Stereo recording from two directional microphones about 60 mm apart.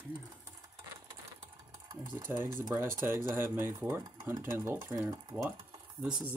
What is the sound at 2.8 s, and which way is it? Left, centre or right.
Speech, right.